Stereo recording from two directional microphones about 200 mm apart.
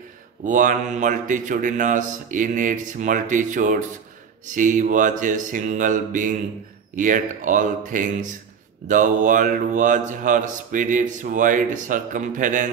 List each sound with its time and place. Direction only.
0.5 s speech: 40° right (ahead or behind)